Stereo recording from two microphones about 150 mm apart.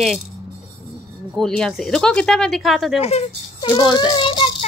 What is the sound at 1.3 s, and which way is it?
A woman's voice, 5° left (ahead or behind).